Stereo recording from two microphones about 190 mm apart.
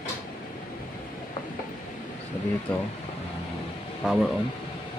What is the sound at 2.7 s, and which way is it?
Speech, 5° left (ahead or behind).